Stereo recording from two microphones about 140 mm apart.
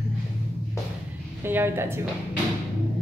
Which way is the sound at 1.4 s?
15° right (ahead or behind).